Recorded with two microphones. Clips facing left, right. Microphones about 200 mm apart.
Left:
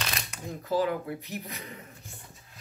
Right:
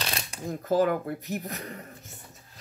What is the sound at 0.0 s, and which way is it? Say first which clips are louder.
Speech: right 3 dB; 35° right (ahead or behind).